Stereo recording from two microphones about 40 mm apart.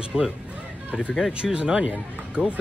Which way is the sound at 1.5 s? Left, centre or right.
Centre.